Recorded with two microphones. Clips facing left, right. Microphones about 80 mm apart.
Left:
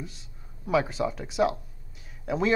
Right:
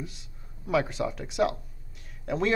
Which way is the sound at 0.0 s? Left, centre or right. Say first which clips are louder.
Right 1 dB; centre.